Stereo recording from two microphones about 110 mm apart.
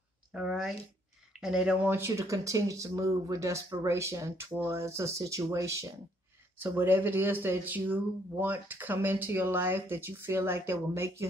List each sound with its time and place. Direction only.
0.3 s speech: 5° right (ahead or behind)
1.9 s speech: 25° right (ahead or behind)